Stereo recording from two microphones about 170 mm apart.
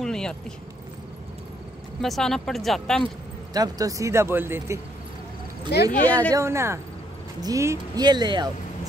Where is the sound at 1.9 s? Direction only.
Centre (ahead or behind).